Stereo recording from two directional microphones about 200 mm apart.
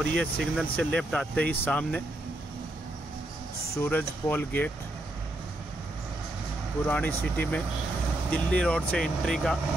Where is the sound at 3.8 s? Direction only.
10° left (ahead or behind).